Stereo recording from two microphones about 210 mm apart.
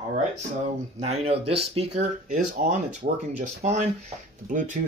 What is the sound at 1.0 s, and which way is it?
Speech, 30° right (ahead or behind).